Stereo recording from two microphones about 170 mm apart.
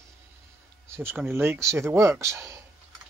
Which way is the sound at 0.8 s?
15° right (ahead or behind).